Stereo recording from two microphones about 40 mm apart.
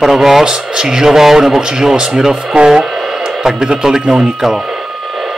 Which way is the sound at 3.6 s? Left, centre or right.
Centre.